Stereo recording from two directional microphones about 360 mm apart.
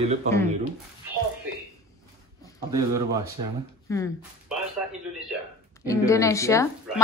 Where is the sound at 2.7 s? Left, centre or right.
Centre.